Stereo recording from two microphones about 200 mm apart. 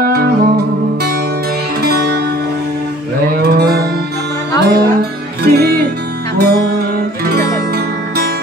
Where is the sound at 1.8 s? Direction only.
55° right (ahead or behind).